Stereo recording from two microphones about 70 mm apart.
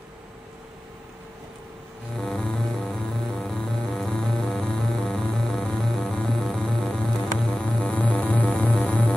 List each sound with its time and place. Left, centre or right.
2.1 s music: centre